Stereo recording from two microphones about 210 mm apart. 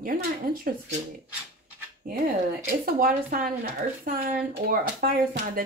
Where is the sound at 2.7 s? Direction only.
40° right (ahead or behind).